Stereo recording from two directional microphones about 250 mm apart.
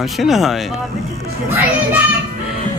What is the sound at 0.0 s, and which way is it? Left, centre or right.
Speech, centre.